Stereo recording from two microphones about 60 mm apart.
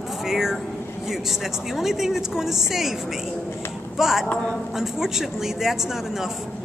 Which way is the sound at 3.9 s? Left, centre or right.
Centre.